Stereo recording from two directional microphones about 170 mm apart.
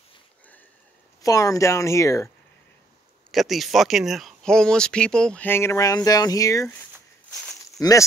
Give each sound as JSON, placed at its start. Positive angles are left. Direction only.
{"t": 1.2, "sound": "speech", "side_deg": 20}
{"t": 3.3, "sound": "speech", "side_deg": 0}